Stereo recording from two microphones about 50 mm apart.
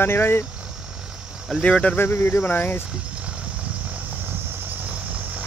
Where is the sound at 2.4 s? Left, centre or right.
Left.